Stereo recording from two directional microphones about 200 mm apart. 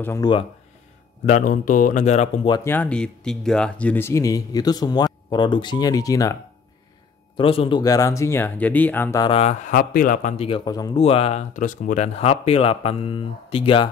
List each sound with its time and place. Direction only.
0.0 s a man's voice: 15° left (ahead or behind)
1.2 s speech: 40° left (ahead or behind)
2.5 s speech: 10° left (ahead or behind)
7.3 s speech: 25° left (ahead or behind); by 9.2 s 10° left (ahead or behind)
9.2 s a man's voice: 30° left (ahead or behind)